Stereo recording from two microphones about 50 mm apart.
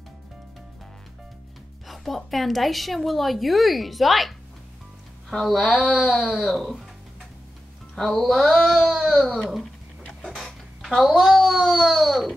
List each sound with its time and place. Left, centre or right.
1.9 s a woman's voice: centre
5.5 s a woman's voice: centre
5.8 s a woman's voice: centre
7.9 s a woman's voice: centre
10.0 s a sound: centre
10.8 s a woman's voice: centre